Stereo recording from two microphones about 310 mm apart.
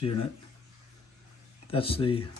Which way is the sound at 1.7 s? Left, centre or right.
Centre.